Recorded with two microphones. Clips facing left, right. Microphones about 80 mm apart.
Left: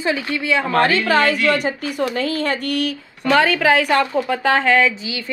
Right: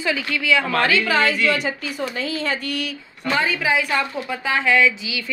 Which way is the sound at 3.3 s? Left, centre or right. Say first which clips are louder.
Left 6 dB; left.